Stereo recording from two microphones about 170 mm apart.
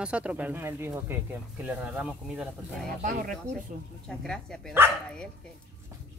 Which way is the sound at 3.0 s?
50° right (ahead or behind).